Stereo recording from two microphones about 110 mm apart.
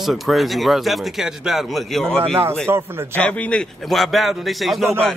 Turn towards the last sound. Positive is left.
turn(degrees=0)  # may be behind; listen again after turning